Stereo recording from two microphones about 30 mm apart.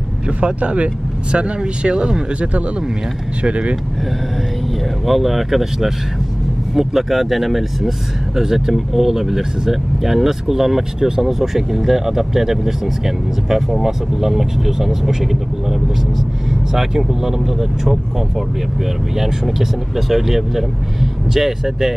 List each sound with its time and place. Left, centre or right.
0.4 s speech: right
1.3 s speech: right
3.4 s speech: right
5.0 s speech: centre
16.7 s speech: centre
19.1 s speech: centre